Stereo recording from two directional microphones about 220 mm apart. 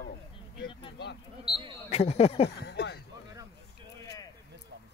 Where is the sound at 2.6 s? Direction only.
50° left (ahead or behind).